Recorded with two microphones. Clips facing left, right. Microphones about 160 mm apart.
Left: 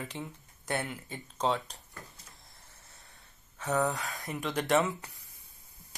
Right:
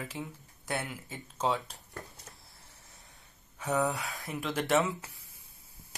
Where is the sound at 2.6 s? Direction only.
10° right (ahead or behind).